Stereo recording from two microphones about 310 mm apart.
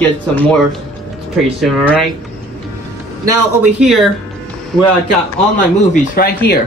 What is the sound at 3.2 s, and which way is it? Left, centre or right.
Speech, centre.